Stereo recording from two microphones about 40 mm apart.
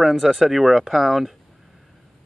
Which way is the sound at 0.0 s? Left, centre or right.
Centre.